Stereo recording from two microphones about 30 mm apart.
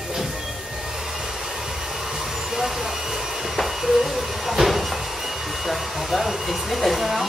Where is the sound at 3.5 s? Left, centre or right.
Centre.